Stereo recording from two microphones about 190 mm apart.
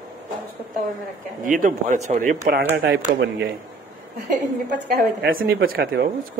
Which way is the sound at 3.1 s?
60° right (ahead or behind).